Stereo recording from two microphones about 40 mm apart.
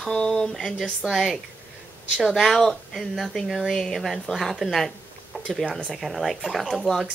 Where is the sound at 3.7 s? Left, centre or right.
Centre.